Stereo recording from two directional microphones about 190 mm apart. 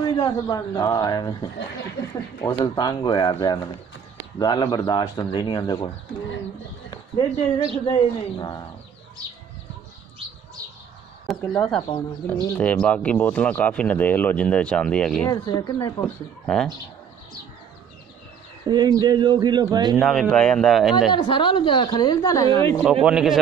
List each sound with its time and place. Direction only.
0.0 s speech: 20° left (ahead or behind)
6.9 s speech: 25° left (ahead or behind)
11.2 s speech: 5° left (ahead or behind)
15.2 s speech: 20° left (ahead or behind)
16.0 s speech: 5° left (ahead or behind)
18.7 s speech: 20° right (ahead or behind)
20.0 s speech: centre (ahead or behind)
21.1 s speech: 25° left (ahead or behind)
23.0 s speech: 5° right (ahead or behind)